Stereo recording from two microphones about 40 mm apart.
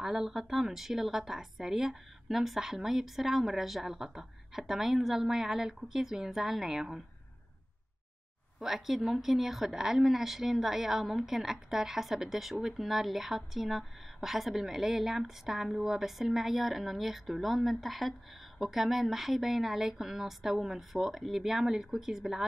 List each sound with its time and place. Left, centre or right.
0.0 s a woman's voice: centre
8.5 s a woman's voice: centre